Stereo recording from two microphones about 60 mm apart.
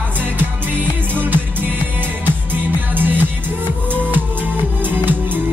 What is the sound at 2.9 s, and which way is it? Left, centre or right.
Music, right.